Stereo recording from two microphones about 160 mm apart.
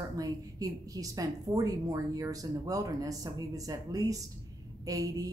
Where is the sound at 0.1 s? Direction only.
20° right (ahead or behind).